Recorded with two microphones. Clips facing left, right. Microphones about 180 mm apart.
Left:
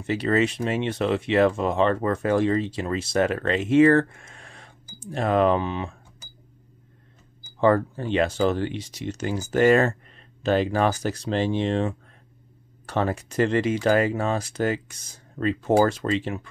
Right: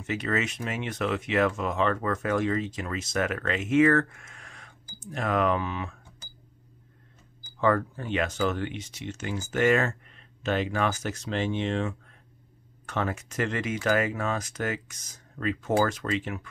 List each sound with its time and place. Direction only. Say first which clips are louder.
0.0 s speech: left 7 dB; 30° left (ahead or behind)
7.6 s speech: left 5 dB; 30° left (ahead or behind)